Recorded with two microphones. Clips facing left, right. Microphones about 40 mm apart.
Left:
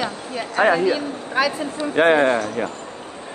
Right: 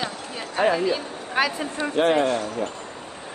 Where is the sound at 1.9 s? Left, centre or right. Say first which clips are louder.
Left 5 dB; left.